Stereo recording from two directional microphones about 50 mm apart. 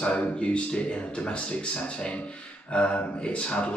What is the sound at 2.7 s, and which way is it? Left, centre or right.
Speech, left.